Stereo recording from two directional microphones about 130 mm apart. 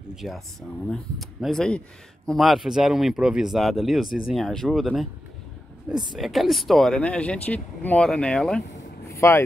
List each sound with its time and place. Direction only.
0.1 s speech: centre (ahead or behind)
9.1 s vehicle: 20° left (ahead or behind)